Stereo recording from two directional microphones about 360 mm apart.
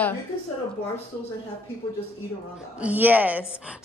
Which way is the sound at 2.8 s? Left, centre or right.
Centre.